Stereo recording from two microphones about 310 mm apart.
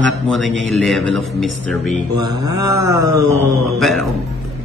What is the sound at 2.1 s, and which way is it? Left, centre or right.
Mantra, right.